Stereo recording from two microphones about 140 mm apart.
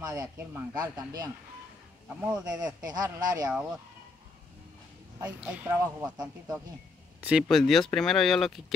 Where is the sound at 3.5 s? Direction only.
5° right (ahead or behind).